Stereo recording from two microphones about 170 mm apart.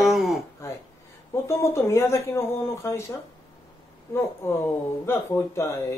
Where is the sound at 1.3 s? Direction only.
15° left (ahead or behind).